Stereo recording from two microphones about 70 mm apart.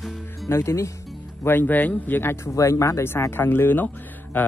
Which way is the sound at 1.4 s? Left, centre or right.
Left.